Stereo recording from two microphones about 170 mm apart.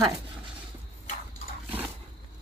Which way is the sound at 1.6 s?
10° right (ahead or behind).